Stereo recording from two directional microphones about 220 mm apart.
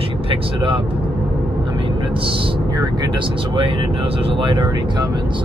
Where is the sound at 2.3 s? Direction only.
20° right (ahead or behind).